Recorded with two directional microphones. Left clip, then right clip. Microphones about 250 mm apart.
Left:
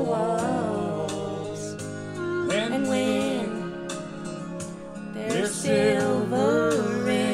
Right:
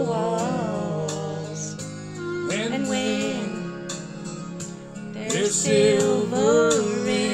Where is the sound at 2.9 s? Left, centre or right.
Centre.